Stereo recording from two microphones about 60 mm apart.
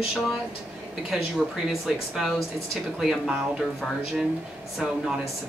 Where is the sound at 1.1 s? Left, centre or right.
Centre.